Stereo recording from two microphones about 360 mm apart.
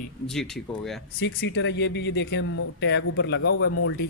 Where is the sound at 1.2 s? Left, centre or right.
Left.